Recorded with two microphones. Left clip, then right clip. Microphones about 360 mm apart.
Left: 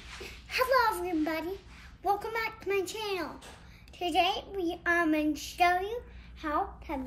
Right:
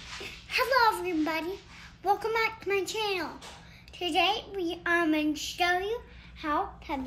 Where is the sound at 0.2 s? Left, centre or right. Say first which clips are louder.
Right 1 dB; centre.